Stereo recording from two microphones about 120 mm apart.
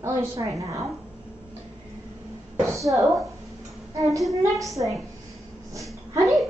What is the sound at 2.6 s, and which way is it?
Speech, 25° right (ahead or behind).